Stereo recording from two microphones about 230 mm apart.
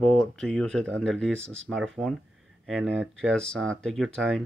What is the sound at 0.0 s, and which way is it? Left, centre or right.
Speech, centre.